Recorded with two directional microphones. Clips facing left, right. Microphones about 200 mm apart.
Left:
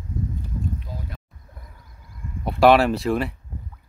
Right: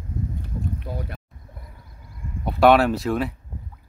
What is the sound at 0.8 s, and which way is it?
Boat, 65° right (ahead or behind).